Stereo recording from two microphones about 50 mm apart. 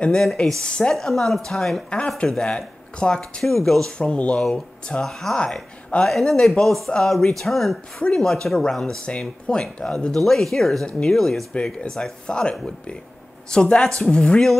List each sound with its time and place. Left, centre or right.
0.1 s speech: centre
0.6 s speech: centre
0.9 s speech: centre
1.9 s speech: centre
3.4 s speech: centre
6.0 s speech: centre
10.1 s speech: centre